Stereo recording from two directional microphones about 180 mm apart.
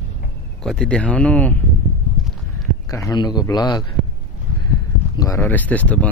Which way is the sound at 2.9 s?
20° left (ahead or behind).